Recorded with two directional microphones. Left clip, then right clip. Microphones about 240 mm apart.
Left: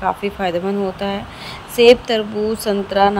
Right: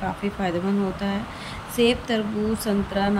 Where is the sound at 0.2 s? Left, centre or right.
Centre.